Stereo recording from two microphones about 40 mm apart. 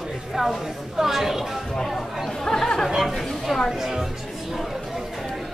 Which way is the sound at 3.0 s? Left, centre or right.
Centre.